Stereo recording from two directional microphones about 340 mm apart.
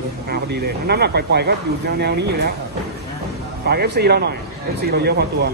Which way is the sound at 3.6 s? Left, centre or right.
Right.